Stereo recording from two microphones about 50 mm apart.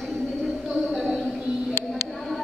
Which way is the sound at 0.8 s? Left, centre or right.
Centre.